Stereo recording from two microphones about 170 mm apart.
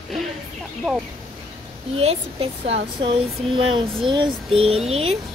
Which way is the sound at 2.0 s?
35° right (ahead or behind).